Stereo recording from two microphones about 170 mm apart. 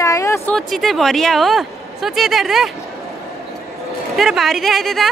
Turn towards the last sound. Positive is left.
turn(degrees=0)  # may be behind; listen again after turning